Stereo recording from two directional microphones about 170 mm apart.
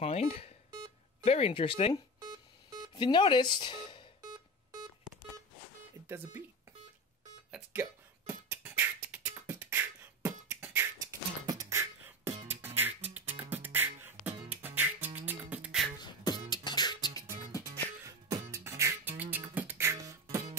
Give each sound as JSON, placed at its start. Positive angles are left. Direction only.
{"t": 0.0, "sound": "speech", "side_deg": 35}
{"t": 2.1, "sound": "alarm clock", "side_deg": -25}
{"t": 2.9, "sound": "speech", "side_deg": 30}
{"t": 6.0, "sound": "speech", "side_deg": -10}
{"t": 7.5, "sound": "speech", "side_deg": -10}
{"t": 8.5, "sound": "beatboxing", "side_deg": -10}
{"t": 12.4, "sound": "music", "side_deg": -10}
{"t": 16.0, "sound": "music", "side_deg": 25}
{"t": 18.0, "sound": "music", "side_deg": -20}